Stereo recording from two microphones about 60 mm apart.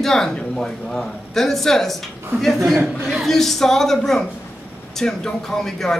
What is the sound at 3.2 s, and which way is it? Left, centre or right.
A man's voice, centre.